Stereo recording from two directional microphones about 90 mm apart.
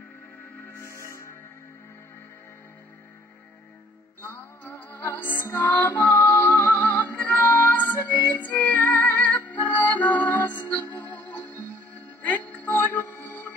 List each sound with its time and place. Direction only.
0.7 s music: 30° left (ahead or behind)
4.2 s music: 25° left (ahead or behind)